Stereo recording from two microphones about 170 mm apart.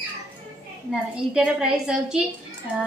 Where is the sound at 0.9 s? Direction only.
Centre (ahead or behind).